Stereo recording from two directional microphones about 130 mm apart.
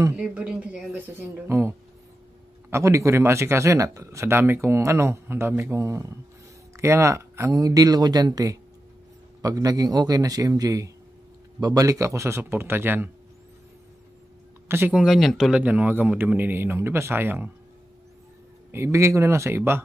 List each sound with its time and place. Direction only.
0.2 s a man's voice: 10° right (ahead or behind)
1.5 s speech: 20° right (ahead or behind)
14.7 s speech: 20° right (ahead or behind)
15.0 s a man's voice: centre (ahead or behind)
18.7 s speech: 20° right (ahead or behind)